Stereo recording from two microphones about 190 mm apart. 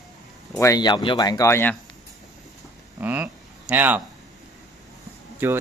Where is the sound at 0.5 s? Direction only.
15° left (ahead or behind).